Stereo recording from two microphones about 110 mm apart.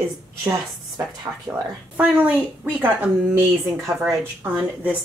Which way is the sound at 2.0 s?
10° right (ahead or behind).